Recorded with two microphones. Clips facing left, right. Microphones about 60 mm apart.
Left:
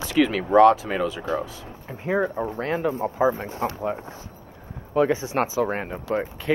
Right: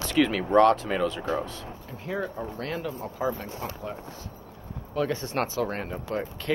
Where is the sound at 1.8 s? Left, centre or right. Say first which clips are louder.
Left 8 dB; left.